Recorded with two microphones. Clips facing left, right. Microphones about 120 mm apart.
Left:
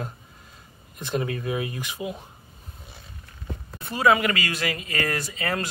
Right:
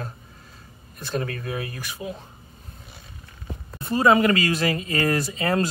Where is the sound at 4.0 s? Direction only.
30° right (ahead or behind).